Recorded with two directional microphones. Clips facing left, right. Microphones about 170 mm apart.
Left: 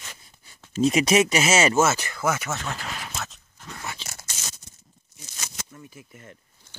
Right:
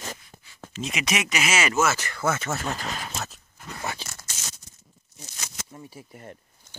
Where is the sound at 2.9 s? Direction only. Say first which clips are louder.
Right 2 dB; 40° right (ahead or behind).